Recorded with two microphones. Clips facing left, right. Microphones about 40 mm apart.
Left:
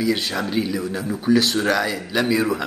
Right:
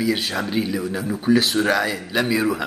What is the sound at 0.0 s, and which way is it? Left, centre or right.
Speech, centre.